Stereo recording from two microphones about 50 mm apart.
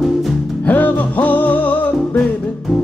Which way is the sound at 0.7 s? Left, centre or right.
Left.